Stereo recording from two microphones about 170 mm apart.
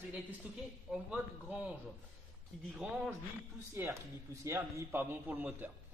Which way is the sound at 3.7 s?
15° right (ahead or behind).